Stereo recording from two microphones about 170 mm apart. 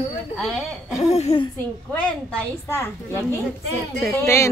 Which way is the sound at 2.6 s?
15° left (ahead or behind).